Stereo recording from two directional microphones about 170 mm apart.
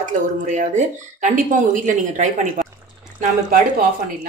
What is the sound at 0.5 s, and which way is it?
A woman's voice, 45° right (ahead or behind).